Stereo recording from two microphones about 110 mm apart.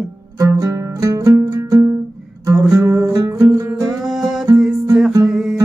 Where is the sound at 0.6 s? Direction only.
30° right (ahead or behind).